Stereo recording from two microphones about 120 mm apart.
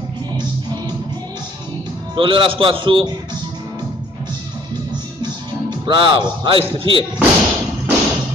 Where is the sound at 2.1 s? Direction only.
45° right (ahead or behind).